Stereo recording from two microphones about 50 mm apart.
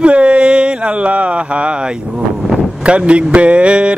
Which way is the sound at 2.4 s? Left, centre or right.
Centre.